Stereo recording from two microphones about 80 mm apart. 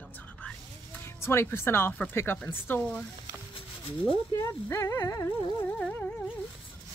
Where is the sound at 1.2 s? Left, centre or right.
Left.